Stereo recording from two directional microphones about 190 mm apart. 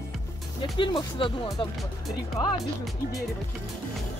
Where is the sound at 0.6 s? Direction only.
25° left (ahead or behind).